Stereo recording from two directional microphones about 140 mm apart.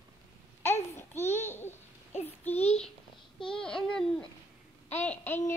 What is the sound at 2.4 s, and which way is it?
Child singing, 15° left (ahead or behind).